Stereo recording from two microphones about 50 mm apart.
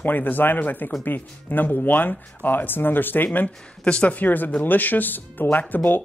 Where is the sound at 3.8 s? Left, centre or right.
Left.